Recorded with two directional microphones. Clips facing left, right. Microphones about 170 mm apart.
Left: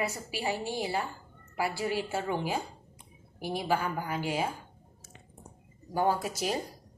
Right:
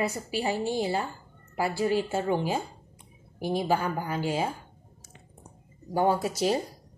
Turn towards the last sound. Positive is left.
turn(degrees=-25)  # may be behind; listen again after turning